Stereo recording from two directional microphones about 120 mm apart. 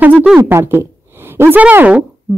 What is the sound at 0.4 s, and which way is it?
A woman's voice, 20° right (ahead or behind).